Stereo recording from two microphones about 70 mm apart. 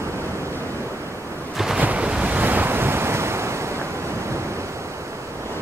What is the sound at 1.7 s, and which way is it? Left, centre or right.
Waves, centre.